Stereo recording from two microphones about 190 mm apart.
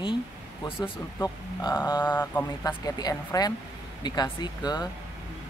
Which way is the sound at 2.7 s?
20° left (ahead or behind).